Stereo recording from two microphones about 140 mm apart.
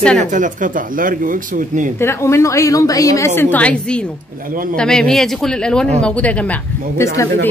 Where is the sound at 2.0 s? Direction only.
20° left (ahead or behind).